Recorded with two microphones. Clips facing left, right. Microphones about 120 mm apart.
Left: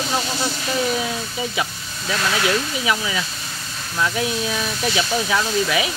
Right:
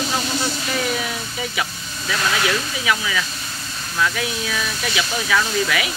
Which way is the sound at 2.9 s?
25° left (ahead or behind).